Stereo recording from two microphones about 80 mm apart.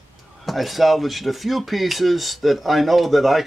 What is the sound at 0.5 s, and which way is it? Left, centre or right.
Speech, centre.